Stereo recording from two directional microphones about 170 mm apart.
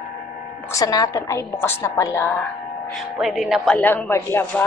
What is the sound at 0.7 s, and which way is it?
A woman's voice, 20° left (ahead or behind).